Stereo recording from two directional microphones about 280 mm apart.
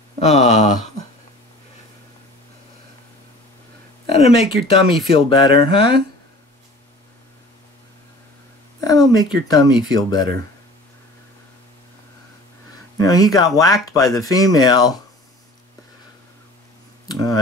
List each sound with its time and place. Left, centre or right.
0.2 s speech: left
4.1 s a sound: left
4.6 s speech: centre
8.8 s speech: centre
12.9 s speech: centre
17.1 s a sound: centre